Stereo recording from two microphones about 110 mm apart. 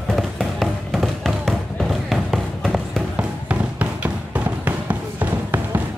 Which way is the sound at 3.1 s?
15° right (ahead or behind).